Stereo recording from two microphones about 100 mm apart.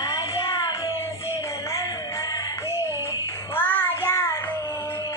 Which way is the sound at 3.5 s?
20° left (ahead or behind).